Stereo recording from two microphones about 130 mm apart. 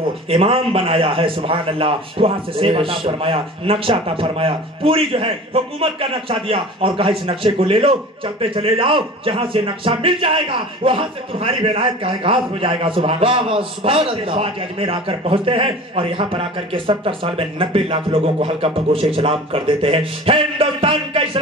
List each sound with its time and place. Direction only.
0.3 s a man's voice: 50° right (ahead or behind)